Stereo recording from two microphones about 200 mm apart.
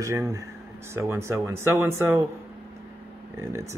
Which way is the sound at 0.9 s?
10° right (ahead or behind).